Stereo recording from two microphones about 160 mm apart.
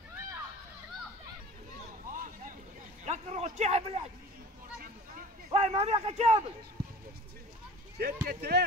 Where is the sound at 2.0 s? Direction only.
55° right (ahead or behind).